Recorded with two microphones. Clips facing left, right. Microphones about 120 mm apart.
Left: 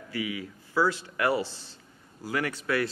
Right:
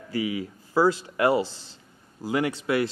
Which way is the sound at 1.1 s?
25° right (ahead or behind).